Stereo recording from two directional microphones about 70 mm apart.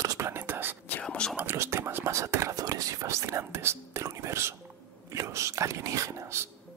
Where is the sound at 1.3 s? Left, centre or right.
Right.